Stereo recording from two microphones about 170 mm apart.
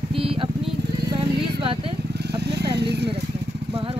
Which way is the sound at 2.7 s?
75° right (ahead or behind).